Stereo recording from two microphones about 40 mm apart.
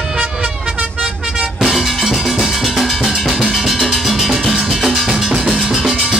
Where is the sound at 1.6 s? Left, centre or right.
Centre.